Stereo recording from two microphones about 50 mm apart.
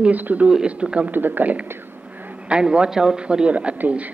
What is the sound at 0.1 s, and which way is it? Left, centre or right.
Speech, right.